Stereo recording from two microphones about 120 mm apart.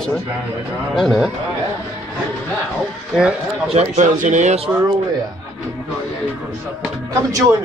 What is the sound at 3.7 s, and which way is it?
Speech, 90° right.